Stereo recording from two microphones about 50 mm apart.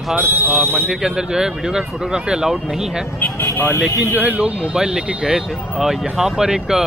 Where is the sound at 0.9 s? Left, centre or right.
Centre.